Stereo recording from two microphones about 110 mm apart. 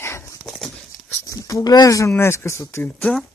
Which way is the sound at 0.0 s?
25° left (ahead or behind).